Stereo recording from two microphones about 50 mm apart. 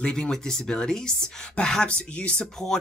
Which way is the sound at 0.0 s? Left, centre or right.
Centre.